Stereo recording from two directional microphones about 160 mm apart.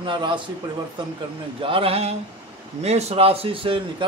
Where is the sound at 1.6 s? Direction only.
35° right (ahead or behind).